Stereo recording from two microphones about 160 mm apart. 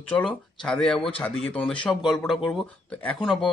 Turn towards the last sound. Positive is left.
turn(degrees=5)  # may be behind; listen again after turning